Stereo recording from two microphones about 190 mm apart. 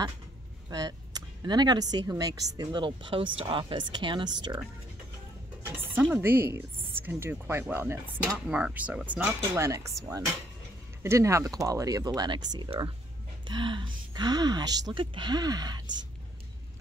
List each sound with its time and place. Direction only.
0.7 s speech: 20° right (ahead or behind)
5.7 s speech: 10° right (ahead or behind)